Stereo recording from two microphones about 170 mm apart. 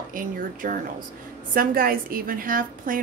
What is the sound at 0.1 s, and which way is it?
Speech, 55° right (ahead or behind).